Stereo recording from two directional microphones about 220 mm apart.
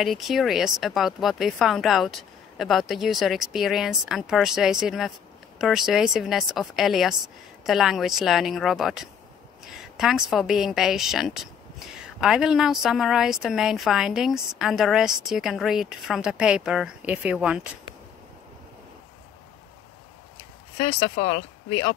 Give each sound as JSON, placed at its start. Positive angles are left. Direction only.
{"t": 0.0, "sound": "a woman's voice", "side_deg": 0}
{"t": 20.7, "sound": "speech", "side_deg": 25}